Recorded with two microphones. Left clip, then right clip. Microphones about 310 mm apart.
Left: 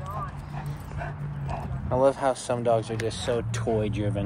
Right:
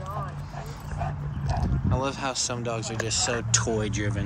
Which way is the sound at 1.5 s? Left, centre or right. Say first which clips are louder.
Even; centre.